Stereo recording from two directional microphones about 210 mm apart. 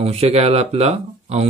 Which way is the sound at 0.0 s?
30° right (ahead or behind).